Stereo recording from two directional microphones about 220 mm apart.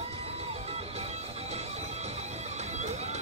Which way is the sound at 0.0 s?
30° right (ahead or behind).